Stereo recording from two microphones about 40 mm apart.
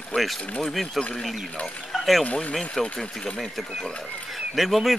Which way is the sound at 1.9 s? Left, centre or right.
Centre.